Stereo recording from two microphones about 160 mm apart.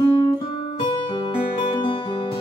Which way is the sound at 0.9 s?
30° left (ahead or behind).